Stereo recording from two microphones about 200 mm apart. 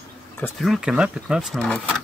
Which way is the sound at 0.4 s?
Centre (ahead or behind).